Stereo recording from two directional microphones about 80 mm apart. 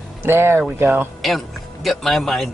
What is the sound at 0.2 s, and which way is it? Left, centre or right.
Speech, right.